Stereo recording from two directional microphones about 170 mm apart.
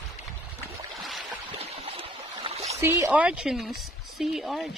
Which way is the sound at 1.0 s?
Centre (ahead or behind).